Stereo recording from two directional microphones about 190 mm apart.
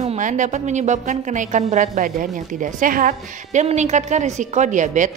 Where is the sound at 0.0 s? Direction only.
40° right (ahead or behind).